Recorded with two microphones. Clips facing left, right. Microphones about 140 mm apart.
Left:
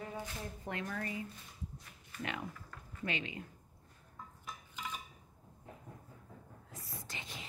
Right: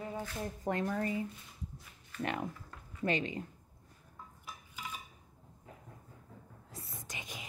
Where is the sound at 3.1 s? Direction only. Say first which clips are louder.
Right 7 dB; 35° right (ahead or behind).